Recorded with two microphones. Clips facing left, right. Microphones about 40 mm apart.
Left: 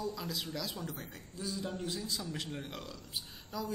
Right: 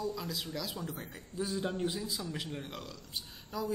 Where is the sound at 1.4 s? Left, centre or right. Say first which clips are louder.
Right 5 dB; right.